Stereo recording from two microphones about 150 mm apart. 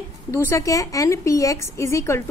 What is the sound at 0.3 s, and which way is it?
A woman's voice, 15° left (ahead or behind).